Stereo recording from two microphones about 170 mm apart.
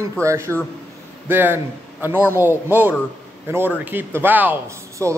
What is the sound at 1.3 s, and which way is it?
Speech, 10° right (ahead or behind).